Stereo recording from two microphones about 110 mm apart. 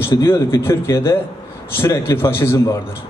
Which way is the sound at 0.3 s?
25° left (ahead or behind).